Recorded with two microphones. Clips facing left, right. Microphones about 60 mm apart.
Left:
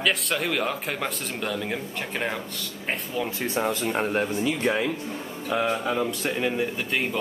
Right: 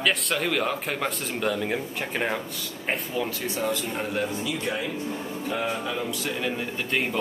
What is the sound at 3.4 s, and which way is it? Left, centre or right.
Speech, left.